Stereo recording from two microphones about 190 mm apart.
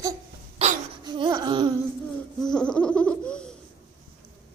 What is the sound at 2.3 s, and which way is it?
Laughter, 5° left (ahead or behind).